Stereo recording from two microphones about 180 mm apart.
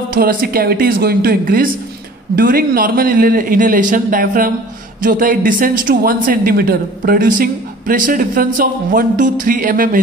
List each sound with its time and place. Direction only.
0.1 s speech: 50° right (ahead or behind)